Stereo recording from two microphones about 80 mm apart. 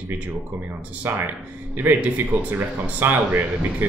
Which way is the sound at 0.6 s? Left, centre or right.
Right.